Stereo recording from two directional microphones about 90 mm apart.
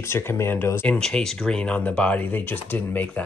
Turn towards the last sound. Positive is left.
turn(degrees=20)  # may be behind; listen again after turning